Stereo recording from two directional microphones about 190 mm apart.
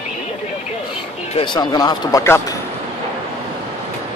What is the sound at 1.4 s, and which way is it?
Speech, 25° left (ahead or behind).